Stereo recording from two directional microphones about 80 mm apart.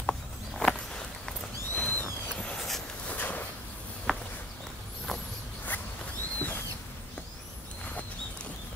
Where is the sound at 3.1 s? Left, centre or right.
Left.